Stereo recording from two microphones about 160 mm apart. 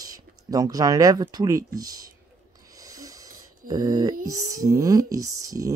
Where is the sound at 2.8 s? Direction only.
20° right (ahead or behind).